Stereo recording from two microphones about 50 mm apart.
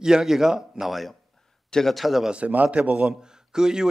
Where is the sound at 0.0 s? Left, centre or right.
Centre.